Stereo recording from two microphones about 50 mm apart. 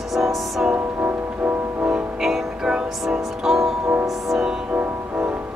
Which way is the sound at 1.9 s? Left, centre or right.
Centre.